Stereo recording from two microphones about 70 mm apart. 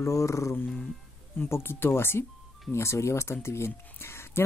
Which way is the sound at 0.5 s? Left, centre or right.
Left.